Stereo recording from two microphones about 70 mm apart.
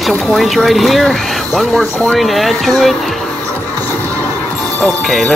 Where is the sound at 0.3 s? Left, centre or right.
Centre.